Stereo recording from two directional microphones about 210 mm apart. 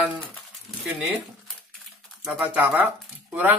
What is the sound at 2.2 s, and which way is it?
Speech, 5° right (ahead or behind).